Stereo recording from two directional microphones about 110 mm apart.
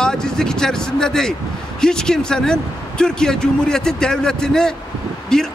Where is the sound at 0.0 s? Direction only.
5° left (ahead or behind).